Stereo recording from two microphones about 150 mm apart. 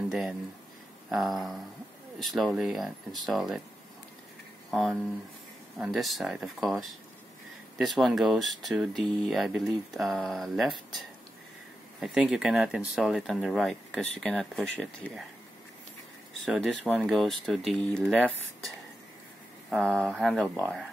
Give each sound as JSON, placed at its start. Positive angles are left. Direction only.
{"t": 0.1, "sound": "speech", "side_deg": 0}
{"t": 4.6, "sound": "speech", "side_deg": 0}
{"t": 16.4, "sound": "speech", "side_deg": -5}
{"t": 19.7, "sound": "speech", "side_deg": 0}